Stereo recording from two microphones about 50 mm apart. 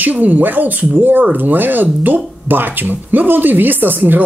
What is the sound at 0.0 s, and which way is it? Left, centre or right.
Speech, right.